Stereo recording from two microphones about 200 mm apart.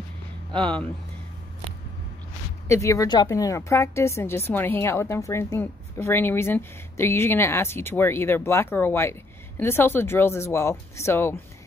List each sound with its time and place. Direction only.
0.5 s speech: 25° right (ahead or behind)
2.7 s a woman's voice: 15° left (ahead or behind)